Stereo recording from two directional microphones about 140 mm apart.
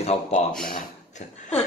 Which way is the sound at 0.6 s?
75° left (ahead or behind).